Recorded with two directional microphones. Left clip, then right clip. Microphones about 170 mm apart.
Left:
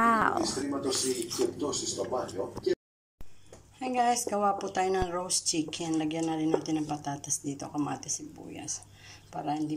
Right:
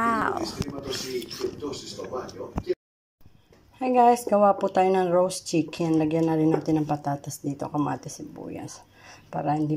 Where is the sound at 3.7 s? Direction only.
25° right (ahead or behind).